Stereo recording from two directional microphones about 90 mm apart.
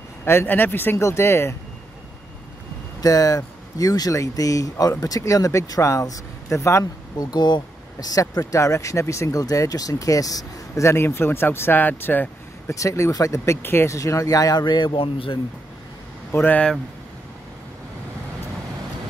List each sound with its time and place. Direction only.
0.2 s speech: 25° left (ahead or behind)
3.0 s speech: 45° left (ahead or behind)
10.7 s speech: 30° left (ahead or behind)
12.6 s speech: 35° left (ahead or behind)
13.6 s a man's voice: 25° left (ahead or behind); by 15.3 s 80° left
16.3 s speech: 20° left (ahead or behind)